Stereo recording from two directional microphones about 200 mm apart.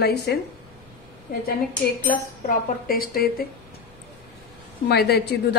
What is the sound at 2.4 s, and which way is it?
A woman's voice, 45° left (ahead or behind).